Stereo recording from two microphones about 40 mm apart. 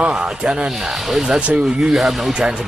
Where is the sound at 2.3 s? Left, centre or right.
Right.